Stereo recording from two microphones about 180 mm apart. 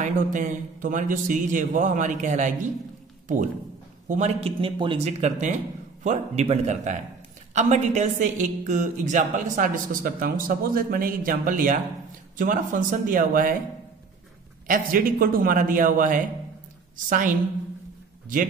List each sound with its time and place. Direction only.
0.0 s a woman's voice: 45° right (ahead or behind)
4.1 s a woman's voice: 35° right (ahead or behind)
14.7 s a woman's voice: 50° right (ahead or behind)